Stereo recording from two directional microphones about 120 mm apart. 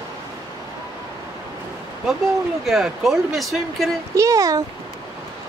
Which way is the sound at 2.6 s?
Centre (ahead or behind).